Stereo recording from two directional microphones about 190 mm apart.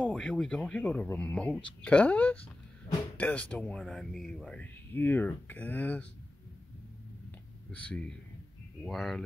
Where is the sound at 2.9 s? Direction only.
30° left (ahead or behind).